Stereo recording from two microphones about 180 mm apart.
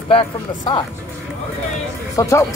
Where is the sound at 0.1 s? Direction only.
25° left (ahead or behind).